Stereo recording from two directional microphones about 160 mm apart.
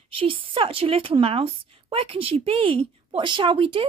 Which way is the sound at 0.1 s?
35° right (ahead or behind).